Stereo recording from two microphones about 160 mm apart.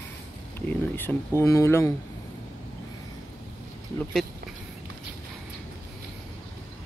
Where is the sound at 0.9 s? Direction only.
15° left (ahead or behind).